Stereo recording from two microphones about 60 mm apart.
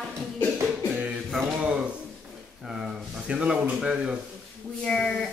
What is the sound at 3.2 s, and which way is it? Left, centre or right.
Speech, centre.